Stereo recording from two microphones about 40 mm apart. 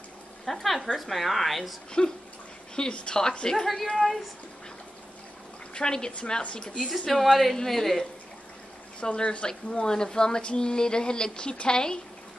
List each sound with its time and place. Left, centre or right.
0.5 s a woman's voice: centre
2.7 s a woman's voice: left
3.9 s a woman's voice: centre
5.8 s a woman's voice: centre
6.9 s a woman's voice: centre
9.0 s a woman's voice: left